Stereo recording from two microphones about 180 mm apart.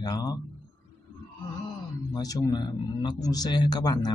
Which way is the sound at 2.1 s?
20° left (ahead or behind).